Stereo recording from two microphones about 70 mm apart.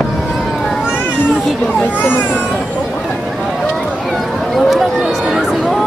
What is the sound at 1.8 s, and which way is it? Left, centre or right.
Speech, left.